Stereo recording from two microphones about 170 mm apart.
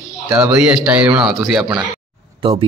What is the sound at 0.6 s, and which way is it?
Speech, 5° right (ahead or behind).